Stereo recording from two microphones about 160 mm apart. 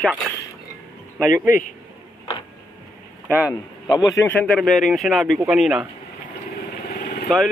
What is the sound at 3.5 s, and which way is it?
Speech, 20° left (ahead or behind).